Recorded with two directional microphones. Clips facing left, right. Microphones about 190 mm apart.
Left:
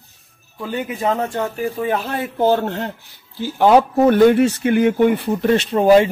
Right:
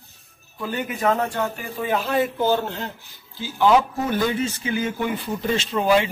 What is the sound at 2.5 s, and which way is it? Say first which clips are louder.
Speech: left 4 dB; 60° left (ahead or behind).